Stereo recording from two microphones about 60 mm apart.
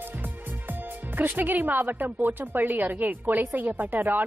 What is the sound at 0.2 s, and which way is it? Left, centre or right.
Speech, right.